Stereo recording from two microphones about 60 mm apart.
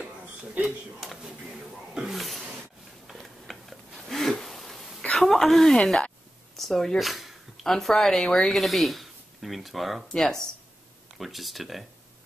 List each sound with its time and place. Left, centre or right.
0.4 s a man's voice: right
1.0 s a sound: centre
5.1 s a woman's voice: centre
10.1 s speech: centre
11.1 s speech: centre